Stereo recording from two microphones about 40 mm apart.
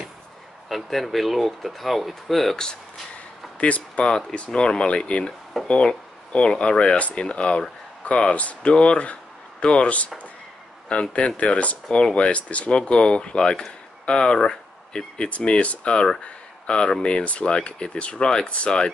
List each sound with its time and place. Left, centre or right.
0.7 s speech: centre
2.5 s speech: centre
3.5 s a sound: left
4.0 s speech: left
12.3 s speech: left
15.3 s speech: left